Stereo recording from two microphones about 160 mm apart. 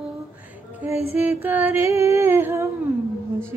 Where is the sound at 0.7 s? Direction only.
10° right (ahead or behind).